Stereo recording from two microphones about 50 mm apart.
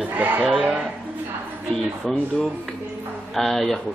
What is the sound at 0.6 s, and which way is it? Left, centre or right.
Speech, centre.